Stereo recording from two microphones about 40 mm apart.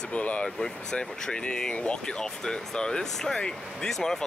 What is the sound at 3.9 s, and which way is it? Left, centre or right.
Speech, centre.